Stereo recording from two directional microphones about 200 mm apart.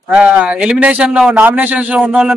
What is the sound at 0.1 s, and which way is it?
A man's voice, 5° right (ahead or behind).